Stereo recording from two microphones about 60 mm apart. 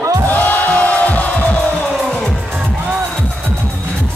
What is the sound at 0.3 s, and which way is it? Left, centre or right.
Music, left.